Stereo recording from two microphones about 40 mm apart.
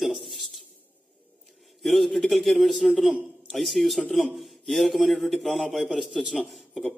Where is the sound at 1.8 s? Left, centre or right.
Centre.